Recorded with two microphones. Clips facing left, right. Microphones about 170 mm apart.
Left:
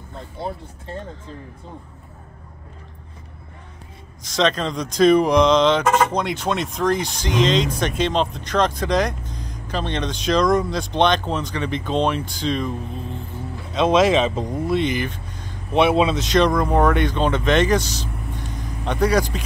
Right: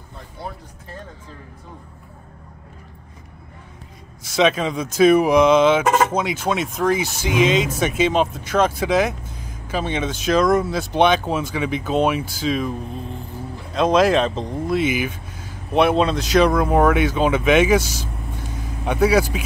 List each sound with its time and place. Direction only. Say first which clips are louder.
0.4 s speech: left 4 dB; 25° left (ahead or behind)
4.2 s speech: right 2 dB; 5° right (ahead or behind); by 14.6 s 10° left (ahead or behind)
14.7 s speech: right 2 dB; 5° right (ahead or behind)